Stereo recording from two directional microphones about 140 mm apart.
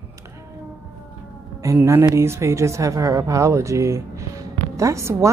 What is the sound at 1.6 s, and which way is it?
Speech, 20° right (ahead or behind).